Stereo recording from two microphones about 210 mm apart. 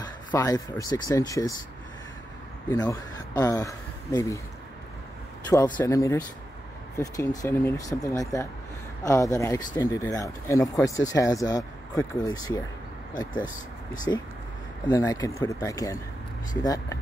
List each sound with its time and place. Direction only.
0.3 s speech: 15° left (ahead or behind)
2.7 s speech: 20° left (ahead or behind)
5.8 s speech: 15° left (ahead or behind)
13.9 s speech: 20° left (ahead or behind)